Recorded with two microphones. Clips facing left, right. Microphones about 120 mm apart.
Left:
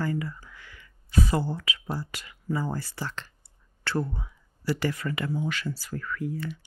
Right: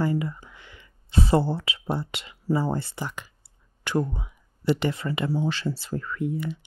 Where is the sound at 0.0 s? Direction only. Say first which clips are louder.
Right 4 dB; 20° right (ahead or behind).